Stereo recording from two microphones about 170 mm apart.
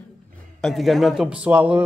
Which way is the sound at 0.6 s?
Centre (ahead or behind).